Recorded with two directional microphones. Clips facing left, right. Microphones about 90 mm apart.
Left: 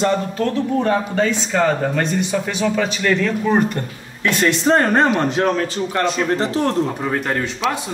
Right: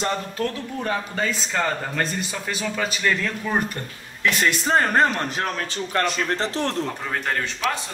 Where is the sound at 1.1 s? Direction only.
Centre (ahead or behind).